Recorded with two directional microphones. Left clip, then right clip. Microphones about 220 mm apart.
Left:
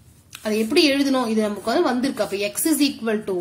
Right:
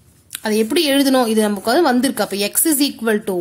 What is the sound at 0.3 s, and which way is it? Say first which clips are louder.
A woman's voice: right 4 dB; 45° right (ahead or behind).